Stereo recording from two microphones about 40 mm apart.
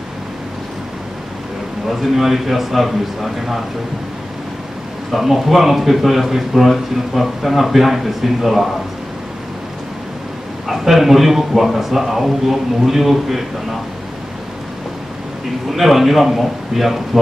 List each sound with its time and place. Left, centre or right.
1.9 s a man's voice: centre
5.1 s a man's voice: centre
10.7 s a man's voice: centre
15.7 s a man's voice: centre